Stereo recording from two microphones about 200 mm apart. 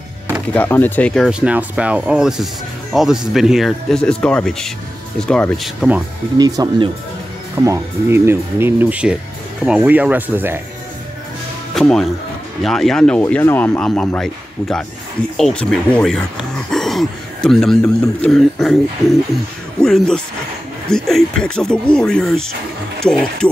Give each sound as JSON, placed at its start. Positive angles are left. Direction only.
{"t": 0.6, "sound": "speech", "side_deg": 10}
{"t": 6.3, "sound": "speech", "side_deg": -20}
{"t": 11.7, "sound": "speech", "side_deg": 0}
{"t": 16.7, "sound": "throat clearing", "side_deg": 0}
{"t": 17.8, "sound": "speech", "side_deg": 15}
{"t": 18.3, "sound": "speech", "side_deg": 0}
{"t": 19.8, "sound": "speech", "side_deg": 5}